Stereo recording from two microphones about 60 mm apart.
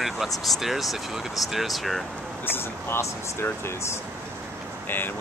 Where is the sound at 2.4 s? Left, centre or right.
Left.